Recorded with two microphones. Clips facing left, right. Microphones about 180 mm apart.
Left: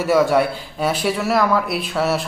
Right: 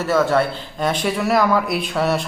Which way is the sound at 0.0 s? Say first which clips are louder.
Left 2 dB; 10° left (ahead or behind).